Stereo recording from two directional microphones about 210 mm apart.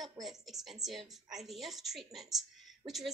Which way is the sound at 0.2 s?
Centre (ahead or behind).